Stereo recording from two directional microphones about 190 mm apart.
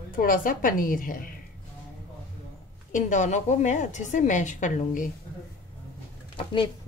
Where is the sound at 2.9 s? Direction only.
40° left (ahead or behind).